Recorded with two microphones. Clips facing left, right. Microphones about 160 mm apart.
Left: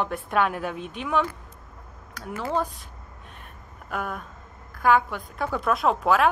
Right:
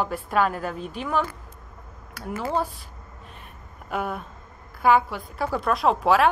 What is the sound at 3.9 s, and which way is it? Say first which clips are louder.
A woman's voice: right 3 dB; 5° right (ahead or behind).